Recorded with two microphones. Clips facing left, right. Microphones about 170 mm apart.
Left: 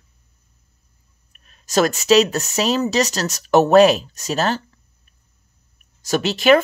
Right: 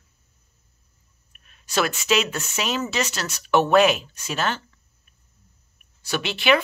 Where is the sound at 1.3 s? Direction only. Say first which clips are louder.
Left 6 dB; 35° left (ahead or behind).